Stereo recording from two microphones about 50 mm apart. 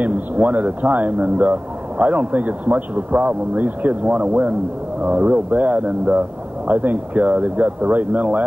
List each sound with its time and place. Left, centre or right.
0.0 s a man's voice: right